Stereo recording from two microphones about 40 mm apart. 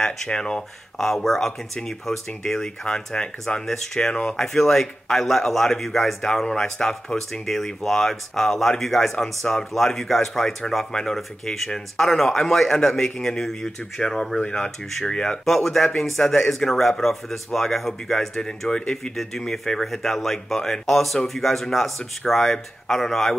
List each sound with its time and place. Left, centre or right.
0.4 s speech: centre
2.4 s speech: centre
3.6 s speech: centre
4.0 s speech: left
4.4 s speech: centre
11.1 s speech: centre
15.4 s speech: centre
18.7 s speech: centre
19.1 s speech: centre